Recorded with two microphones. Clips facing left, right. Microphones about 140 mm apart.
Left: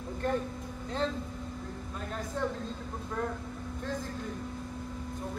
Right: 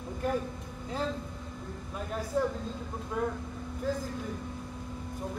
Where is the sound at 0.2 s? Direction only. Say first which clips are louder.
Even; 10° right (ahead or behind).